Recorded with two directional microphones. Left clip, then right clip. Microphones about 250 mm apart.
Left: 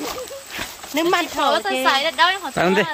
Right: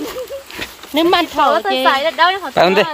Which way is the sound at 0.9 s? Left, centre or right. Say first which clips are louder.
Right 6 dB; right.